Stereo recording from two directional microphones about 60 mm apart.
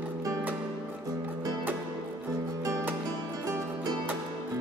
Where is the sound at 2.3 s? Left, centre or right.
Right.